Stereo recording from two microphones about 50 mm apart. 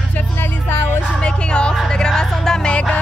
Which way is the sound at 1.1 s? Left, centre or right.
Centre.